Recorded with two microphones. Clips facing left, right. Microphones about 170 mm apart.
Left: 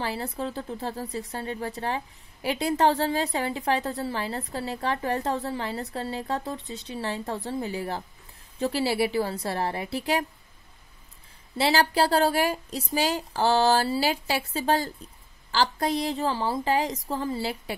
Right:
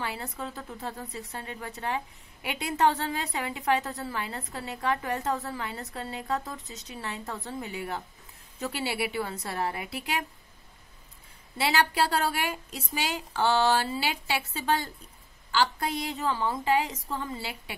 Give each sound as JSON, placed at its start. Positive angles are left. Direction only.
{"t": 0.0, "sound": "a woman's voice", "side_deg": 30}
{"t": 11.5, "sound": "a woman's voice", "side_deg": 30}